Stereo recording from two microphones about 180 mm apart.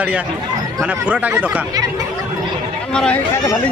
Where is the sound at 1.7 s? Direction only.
20° right (ahead or behind).